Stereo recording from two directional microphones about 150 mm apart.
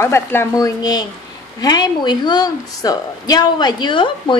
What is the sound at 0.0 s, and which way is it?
A woman's voice, 15° left (ahead or behind).